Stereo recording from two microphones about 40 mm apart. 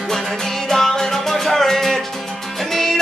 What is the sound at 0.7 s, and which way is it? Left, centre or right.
Music, centre.